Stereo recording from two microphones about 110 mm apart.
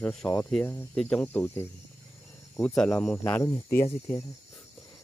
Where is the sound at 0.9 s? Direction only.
10° left (ahead or behind).